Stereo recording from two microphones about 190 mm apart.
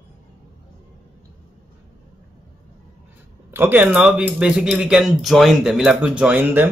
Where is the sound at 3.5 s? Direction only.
10° right (ahead or behind).